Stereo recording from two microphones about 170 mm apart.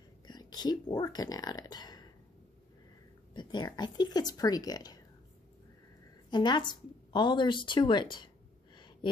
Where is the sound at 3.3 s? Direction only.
25° left (ahead or behind).